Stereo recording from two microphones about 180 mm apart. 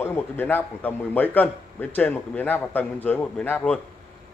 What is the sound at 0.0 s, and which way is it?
A man's voice, 10° left (ahead or behind).